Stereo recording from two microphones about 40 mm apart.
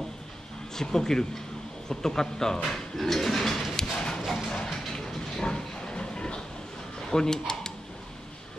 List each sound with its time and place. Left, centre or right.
0.7 s speech: centre
2.7 s bird: centre
3.7 s clip-clop: centre
4.2 s music: centre
4.6 s a sound: centre
5.4 s a sound: left
7.1 s speech: centre